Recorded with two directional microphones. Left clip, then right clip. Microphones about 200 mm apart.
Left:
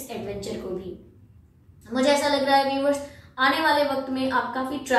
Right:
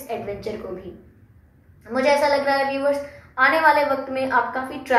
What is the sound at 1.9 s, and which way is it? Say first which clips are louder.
A woman's voice: right 3 dB; 25° right (ahead or behind).